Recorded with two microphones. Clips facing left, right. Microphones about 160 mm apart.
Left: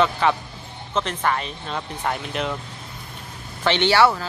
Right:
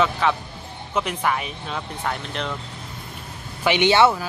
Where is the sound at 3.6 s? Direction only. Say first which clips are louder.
Right 1 dB; 15° right (ahead or behind).